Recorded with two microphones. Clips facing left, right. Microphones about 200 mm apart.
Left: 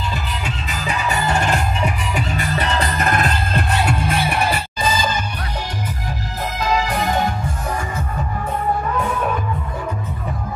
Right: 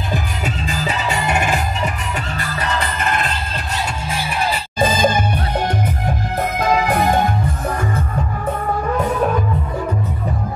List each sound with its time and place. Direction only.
1.1 s music: 10° right (ahead or behind)
2.3 s music: 25° left (ahead or behind)
3.0 s music: 45° left (ahead or behind)
4.7 s music: 55° right (ahead or behind)